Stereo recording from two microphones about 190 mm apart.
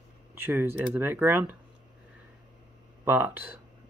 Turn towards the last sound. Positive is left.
turn(degrees=-10)  # may be behind; listen again after turning